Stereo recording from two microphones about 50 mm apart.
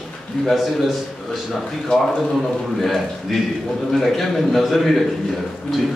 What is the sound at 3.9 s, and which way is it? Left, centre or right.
A man's voice, centre.